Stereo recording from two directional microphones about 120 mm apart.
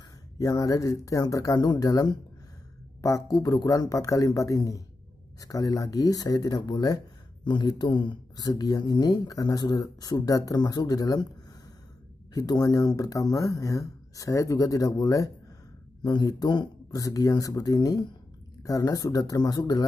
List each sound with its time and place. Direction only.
0.4 s speech: 30° left (ahead or behind)
12.4 s speech: 30° left (ahead or behind)